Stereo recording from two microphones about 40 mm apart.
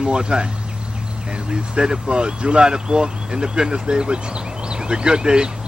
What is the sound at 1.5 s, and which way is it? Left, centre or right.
Speech, centre.